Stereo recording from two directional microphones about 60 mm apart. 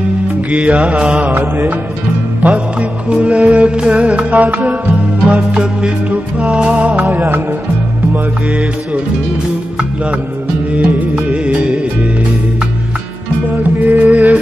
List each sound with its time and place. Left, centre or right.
0.5 s music: right
1.3 s music: right
2.4 s music: right
5.3 s music: centre; by 7.4 s right
8.1 s music: right
10.7 s music: right
13.7 s music: right